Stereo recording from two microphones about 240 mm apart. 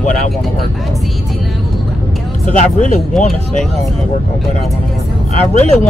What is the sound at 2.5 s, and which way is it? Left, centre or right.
Speech, left.